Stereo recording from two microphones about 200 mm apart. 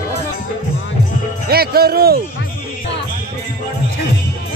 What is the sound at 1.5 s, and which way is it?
Music, 50° right (ahead or behind).